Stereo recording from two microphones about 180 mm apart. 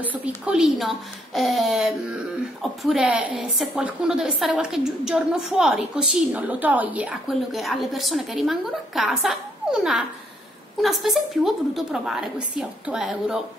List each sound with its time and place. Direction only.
0.0 s a woman's voice: 10° right (ahead or behind)